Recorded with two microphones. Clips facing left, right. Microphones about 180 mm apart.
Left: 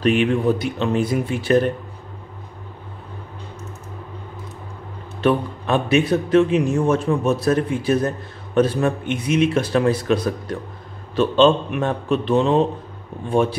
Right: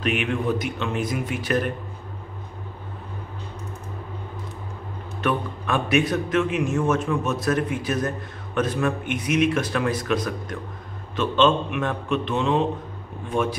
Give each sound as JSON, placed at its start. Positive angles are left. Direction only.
{"t": 0.0, "sound": "a man's voice", "side_deg": 35}
{"t": 5.2, "sound": "a man's voice", "side_deg": 25}